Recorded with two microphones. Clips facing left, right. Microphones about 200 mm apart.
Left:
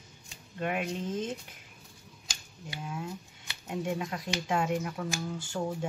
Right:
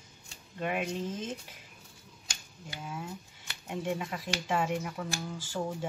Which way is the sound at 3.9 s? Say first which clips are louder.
Left 2 dB; 5° right (ahead or behind).